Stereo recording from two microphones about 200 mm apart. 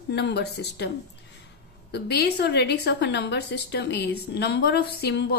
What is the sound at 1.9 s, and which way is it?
Speech, 55° left (ahead or behind).